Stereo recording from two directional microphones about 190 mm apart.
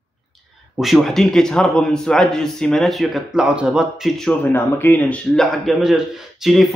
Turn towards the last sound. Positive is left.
turn(degrees=0)  # may be behind; listen again after turning